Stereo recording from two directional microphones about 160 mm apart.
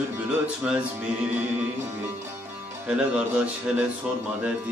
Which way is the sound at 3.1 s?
5° right (ahead or behind).